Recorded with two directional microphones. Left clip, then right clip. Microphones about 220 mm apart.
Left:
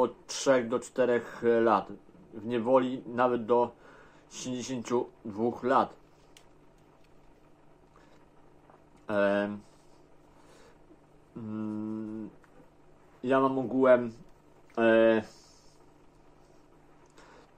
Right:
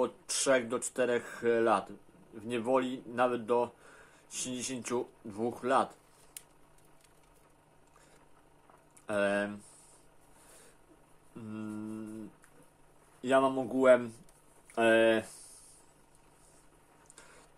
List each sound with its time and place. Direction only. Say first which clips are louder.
0.0 s speech: left 4 dB; 5° right (ahead or behind)
9.0 s speech: left 3 dB; 5° right (ahead or behind)
11.5 s mantra: left 5 dB; 15° right (ahead or behind)
13.2 s mantra: left 1 dB; 10° right (ahead or behind)